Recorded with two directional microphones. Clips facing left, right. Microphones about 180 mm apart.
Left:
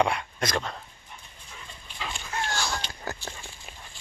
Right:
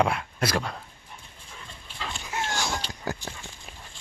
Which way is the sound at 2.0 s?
Centre (ahead or behind).